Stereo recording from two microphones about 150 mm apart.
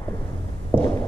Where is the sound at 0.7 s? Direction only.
25° left (ahead or behind).